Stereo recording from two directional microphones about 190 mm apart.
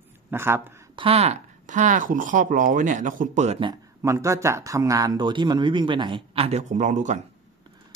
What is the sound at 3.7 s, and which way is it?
Speech, 15° right (ahead or behind).